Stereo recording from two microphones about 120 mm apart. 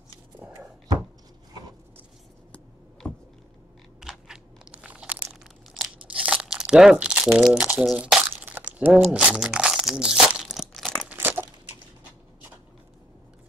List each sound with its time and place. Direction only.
4.0 s crunch: 5° right (ahead or behind)
7.3 s speech: 5° right (ahead or behind)
8.3 s crunch: 15° right (ahead or behind)
11.1 s crumpling: 15° right (ahead or behind)